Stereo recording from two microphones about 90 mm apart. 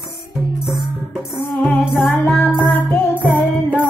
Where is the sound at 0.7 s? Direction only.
Centre (ahead or behind).